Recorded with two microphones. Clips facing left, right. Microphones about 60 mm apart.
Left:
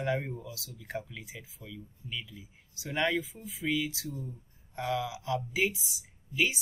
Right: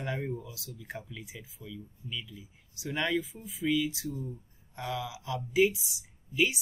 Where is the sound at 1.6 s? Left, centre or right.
Centre.